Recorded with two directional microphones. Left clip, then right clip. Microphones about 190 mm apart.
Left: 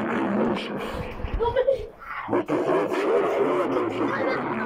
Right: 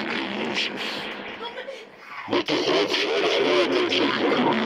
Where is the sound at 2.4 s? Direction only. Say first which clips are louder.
Right 2 dB; 15° right (ahead or behind).